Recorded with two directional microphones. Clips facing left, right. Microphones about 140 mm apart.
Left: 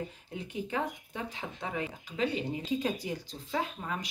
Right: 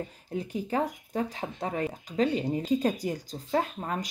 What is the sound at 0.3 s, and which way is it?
Speech, 40° right (ahead or behind).